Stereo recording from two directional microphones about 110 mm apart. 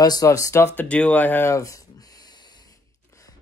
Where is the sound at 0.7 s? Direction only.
15° left (ahead or behind).